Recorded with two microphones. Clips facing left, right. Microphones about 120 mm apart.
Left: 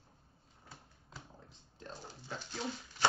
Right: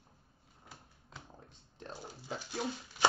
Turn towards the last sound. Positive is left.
turn(degrees=-10)  # may be behind; listen again after turning